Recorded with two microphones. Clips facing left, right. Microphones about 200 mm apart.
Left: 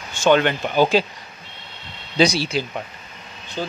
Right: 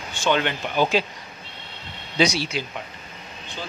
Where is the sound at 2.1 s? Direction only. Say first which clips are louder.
Left 4 dB; 35° left (ahead or behind).